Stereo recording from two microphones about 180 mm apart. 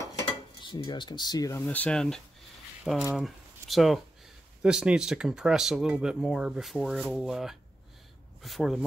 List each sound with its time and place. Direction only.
0.6 s speech: 25° left (ahead or behind)
1.7 s speech: 5° left (ahead or behind)